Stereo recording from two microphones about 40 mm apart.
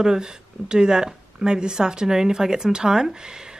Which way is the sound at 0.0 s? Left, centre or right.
Centre.